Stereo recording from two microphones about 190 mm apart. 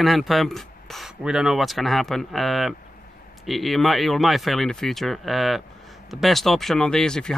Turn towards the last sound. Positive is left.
turn(degrees=5)  # may be behind; listen again after turning